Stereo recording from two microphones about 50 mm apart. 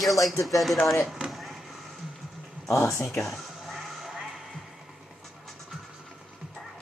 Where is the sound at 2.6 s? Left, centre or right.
Left.